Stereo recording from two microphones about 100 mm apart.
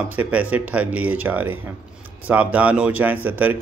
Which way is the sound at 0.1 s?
15° right (ahead or behind).